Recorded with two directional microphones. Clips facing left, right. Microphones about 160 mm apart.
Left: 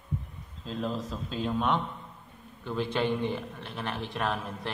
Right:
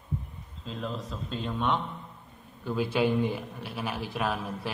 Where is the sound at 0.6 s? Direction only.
Centre (ahead or behind).